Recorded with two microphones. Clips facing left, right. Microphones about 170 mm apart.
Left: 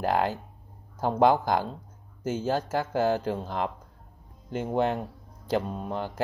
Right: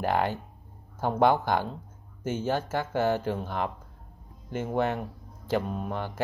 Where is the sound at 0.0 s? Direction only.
10° left (ahead or behind).